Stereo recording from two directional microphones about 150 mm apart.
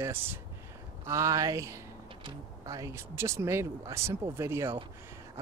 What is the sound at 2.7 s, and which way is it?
Speech, 20° right (ahead or behind).